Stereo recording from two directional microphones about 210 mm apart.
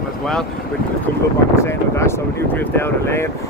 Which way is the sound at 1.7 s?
10° left (ahead or behind).